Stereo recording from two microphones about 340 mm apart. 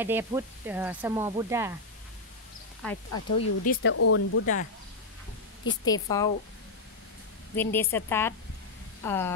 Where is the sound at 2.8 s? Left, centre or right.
Centre.